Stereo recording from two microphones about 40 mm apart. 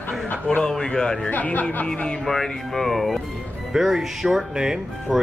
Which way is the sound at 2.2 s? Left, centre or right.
Centre.